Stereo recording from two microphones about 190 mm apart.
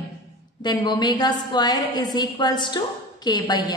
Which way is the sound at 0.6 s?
25° left (ahead or behind).